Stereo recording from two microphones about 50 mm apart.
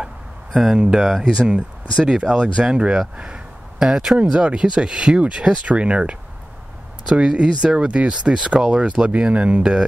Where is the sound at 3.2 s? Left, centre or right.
Centre.